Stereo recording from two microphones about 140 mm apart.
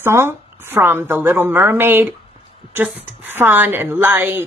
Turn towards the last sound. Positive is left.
turn(degrees=-15)  # may be behind; listen again after turning